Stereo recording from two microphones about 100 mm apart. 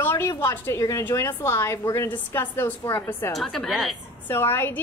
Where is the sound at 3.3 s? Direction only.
5° left (ahead or behind).